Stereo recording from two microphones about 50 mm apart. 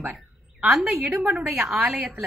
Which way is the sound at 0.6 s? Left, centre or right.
Centre.